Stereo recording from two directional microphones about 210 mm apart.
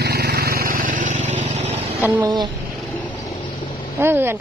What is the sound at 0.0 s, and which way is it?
Vehicle, 50° right (ahead or behind).